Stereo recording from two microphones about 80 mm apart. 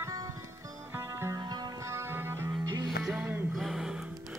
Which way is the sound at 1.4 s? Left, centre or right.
Right.